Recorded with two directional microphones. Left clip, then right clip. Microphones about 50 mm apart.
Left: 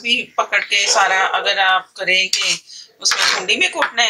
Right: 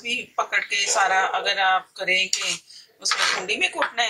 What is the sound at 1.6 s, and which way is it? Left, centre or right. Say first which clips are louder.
Speech: left 5 dB; centre.